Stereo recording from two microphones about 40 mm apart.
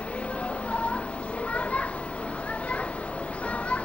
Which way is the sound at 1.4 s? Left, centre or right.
Left.